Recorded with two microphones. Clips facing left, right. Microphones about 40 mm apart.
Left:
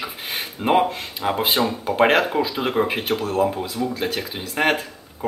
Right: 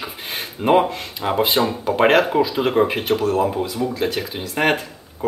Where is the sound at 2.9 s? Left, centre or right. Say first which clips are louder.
Right 3 dB; centre.